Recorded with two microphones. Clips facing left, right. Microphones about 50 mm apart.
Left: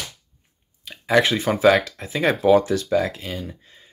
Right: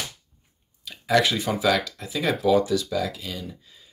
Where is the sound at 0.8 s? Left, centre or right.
Left.